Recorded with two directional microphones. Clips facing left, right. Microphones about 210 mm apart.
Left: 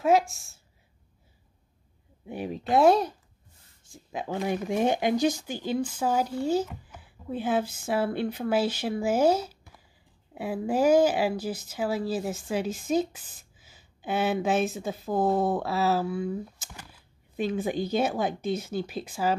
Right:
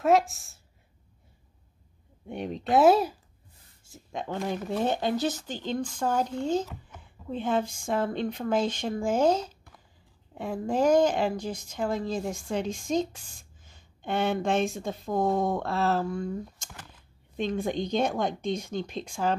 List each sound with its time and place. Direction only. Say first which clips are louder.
0.0 s speech: even; centre (ahead or behind)
2.2 s speech: even; 5° left (ahead or behind)